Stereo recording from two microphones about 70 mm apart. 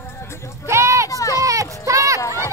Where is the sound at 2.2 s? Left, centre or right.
Left.